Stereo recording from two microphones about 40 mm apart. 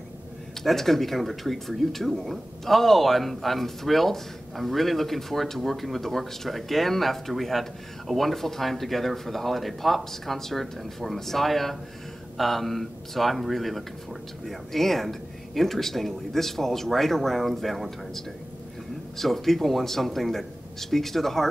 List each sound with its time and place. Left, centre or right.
0.6 s speech: centre